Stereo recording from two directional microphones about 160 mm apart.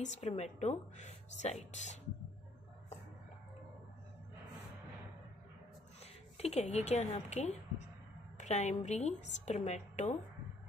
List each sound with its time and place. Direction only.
0.0 s a woman's voice: 45° left (ahead or behind)
6.3 s a woman's voice: 40° left (ahead or behind)